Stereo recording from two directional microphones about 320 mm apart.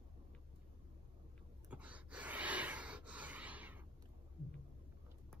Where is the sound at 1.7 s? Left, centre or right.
Centre.